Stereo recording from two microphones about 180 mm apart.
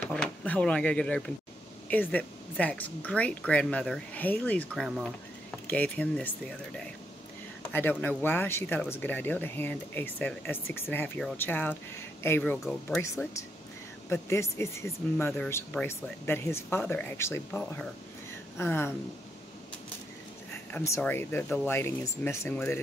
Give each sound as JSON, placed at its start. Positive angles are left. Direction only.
{"t": 0.0, "sound": "speech", "side_deg": 5}
{"t": 7.7, "sound": "speech", "side_deg": 10}
{"t": 20.5, "sound": "speech", "side_deg": 15}